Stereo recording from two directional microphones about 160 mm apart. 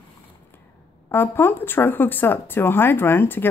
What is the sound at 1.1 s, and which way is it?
Speech, 15° left (ahead or behind).